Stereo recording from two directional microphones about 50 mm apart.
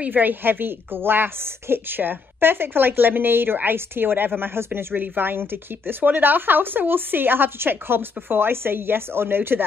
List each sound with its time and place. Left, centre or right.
0.0 s speech: right